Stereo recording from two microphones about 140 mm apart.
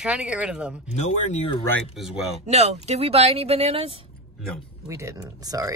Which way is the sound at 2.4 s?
50° right (ahead or behind).